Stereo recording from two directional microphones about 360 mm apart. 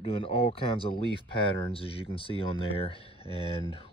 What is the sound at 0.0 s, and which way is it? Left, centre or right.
Speech, centre.